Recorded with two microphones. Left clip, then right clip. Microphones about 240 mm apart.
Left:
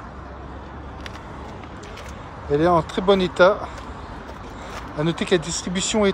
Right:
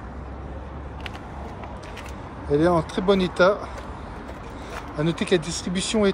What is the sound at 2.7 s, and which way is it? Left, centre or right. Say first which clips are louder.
Speech: left 3 dB; centre.